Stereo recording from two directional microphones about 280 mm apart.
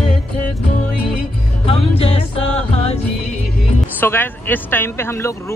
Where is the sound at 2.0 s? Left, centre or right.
Left.